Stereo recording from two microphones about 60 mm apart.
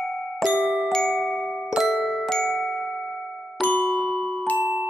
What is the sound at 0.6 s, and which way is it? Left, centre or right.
Glockenspiel, centre.